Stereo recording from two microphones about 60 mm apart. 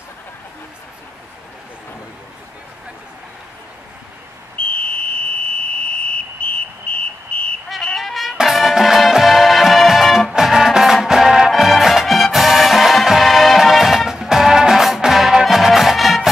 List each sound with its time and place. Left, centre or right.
4.6 s fire alarm: left
5.8 s a sound: centre
7.7 s music: centre